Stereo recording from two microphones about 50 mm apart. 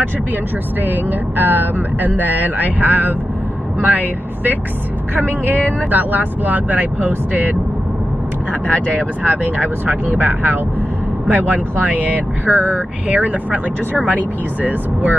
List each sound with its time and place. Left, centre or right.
1.4 s speech: right
8.6 s speech: left
9.6 s speech: right